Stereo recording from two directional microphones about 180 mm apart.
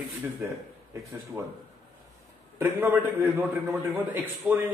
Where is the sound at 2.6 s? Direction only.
10° right (ahead or behind).